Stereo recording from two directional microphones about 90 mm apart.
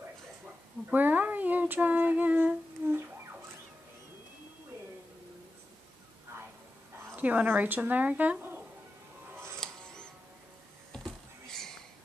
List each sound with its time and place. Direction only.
0.8 s humming: 20° right (ahead or behind)
7.2 s speech: 20° right (ahead or behind)
9.6 s music: 5° left (ahead or behind)
10.9 s a sound: 5° left (ahead or behind)